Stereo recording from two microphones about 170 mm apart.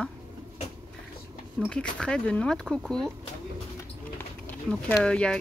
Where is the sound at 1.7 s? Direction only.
5° left (ahead or behind).